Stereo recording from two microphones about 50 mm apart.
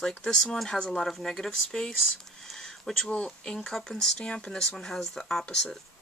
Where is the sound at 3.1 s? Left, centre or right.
Left.